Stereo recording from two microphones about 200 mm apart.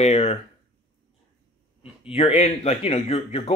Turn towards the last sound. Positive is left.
turn(degrees=30)  # may be behind; listen again after turning